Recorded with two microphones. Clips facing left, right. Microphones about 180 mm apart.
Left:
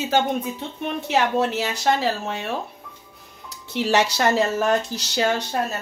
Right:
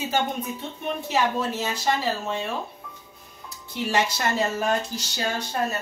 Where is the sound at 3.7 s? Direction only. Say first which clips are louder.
Left 5 dB; 75° left (ahead or behind).